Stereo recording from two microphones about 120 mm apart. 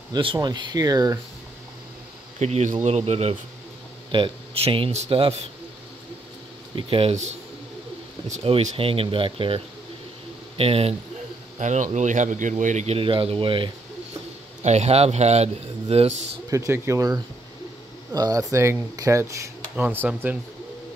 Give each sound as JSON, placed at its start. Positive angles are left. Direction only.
{"t": 0.1, "sound": "speech", "side_deg": -40}
{"t": 2.3, "sound": "a man's voice", "side_deg": -70}
{"t": 4.1, "sound": "speech", "side_deg": -50}
{"t": 6.7, "sound": "speech", "side_deg": -50}
{"t": 8.7, "sound": "speech", "side_deg": -50}
{"t": 10.6, "sound": "a man's voice", "side_deg": -55}
{"t": 11.5, "sound": "speech", "side_deg": -80}
{"t": 14.6, "sound": "a man's voice", "side_deg": -65}
{"t": 16.4, "sound": "speech", "side_deg": -25}